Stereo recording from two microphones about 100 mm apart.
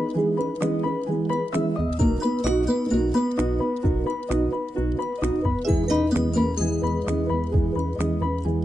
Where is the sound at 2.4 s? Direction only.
5° right (ahead or behind).